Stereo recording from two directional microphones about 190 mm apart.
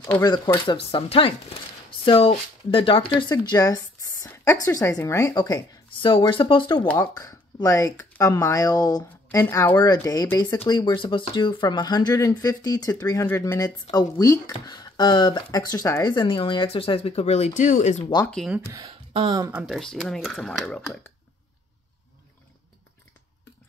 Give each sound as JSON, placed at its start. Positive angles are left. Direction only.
{"t": 0.0, "sound": "speech", "side_deg": 10}
{"t": 0.3, "sound": "speech", "side_deg": 25}
{"t": 18.3, "sound": "speech", "side_deg": 0}
{"t": 18.7, "sound": "a sound", "side_deg": -20}
{"t": 19.5, "sound": "speech", "side_deg": 0}